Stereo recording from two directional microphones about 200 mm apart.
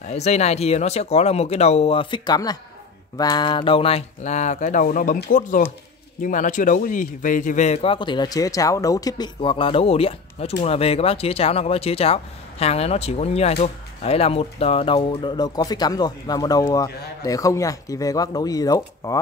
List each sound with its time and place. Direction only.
0.1 s a man's voice: 35° left (ahead or behind); by 19.1 s 15° left (ahead or behind)